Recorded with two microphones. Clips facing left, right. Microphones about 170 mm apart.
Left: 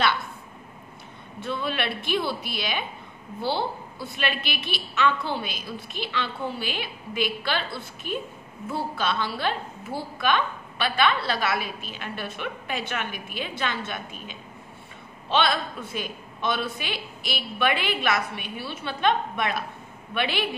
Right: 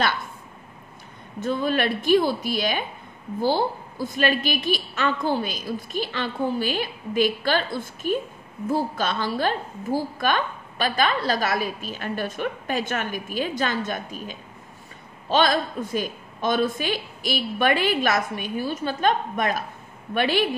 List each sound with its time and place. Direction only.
1.4 s a woman's voice: 45° right (ahead or behind)